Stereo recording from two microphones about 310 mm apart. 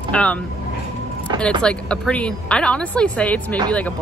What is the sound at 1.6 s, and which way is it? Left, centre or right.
A woman's voice, centre.